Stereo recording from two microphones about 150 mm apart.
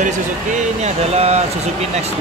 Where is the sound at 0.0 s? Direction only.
55° right (ahead or behind).